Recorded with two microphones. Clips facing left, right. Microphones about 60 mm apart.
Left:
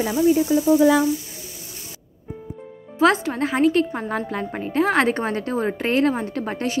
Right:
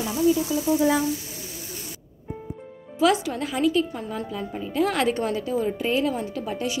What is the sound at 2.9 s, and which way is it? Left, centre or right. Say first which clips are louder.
A woman's voice: left 3 dB; left.